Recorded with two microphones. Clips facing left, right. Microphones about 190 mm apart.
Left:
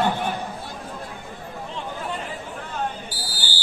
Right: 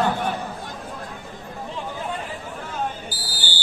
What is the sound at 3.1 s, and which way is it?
Buzzer, 25° left (ahead or behind).